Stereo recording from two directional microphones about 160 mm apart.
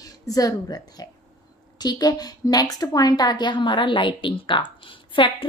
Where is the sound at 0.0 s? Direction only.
20° left (ahead or behind).